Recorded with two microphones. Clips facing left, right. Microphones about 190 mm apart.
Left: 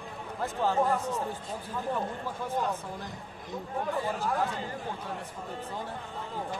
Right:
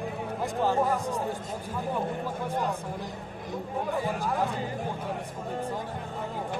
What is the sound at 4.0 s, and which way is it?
Speech, 15° right (ahead or behind).